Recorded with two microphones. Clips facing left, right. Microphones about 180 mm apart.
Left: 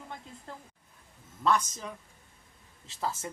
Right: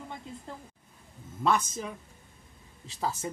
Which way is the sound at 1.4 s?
10° right (ahead or behind).